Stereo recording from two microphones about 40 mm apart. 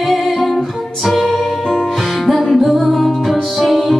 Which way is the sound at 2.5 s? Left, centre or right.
Centre.